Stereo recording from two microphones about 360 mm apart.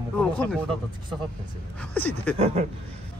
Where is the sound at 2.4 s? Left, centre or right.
Centre.